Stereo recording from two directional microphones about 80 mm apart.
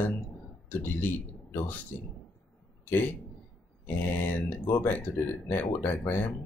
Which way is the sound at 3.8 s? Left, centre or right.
Left.